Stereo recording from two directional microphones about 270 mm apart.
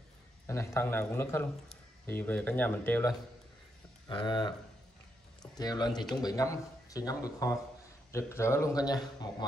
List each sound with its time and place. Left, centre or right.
0.5 s a man's voice: centre